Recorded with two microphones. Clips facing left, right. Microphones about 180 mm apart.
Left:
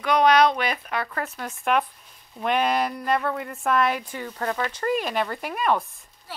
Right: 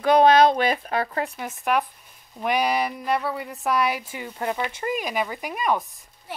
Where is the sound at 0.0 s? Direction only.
30° right (ahead or behind).